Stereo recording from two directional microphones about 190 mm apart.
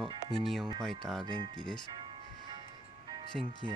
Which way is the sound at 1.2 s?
25° right (ahead or behind).